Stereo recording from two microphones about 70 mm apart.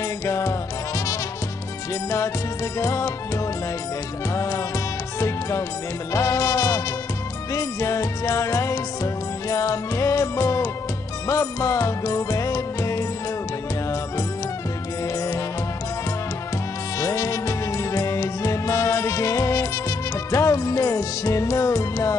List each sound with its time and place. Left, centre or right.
0.2 s music: left
6.1 s music: left
17.0 s music: left